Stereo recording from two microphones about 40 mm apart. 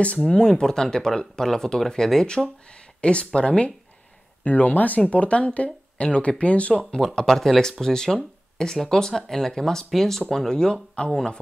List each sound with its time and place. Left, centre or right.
0.3 s speech: centre
4.5 s speech: left
6.7 s speech: centre